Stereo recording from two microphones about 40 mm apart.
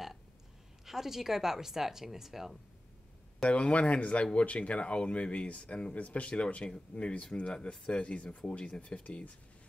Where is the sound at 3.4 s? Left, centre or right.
Left.